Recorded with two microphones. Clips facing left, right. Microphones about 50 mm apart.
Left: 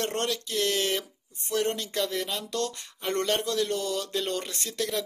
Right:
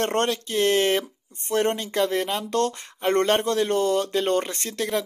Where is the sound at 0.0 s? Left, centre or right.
Right.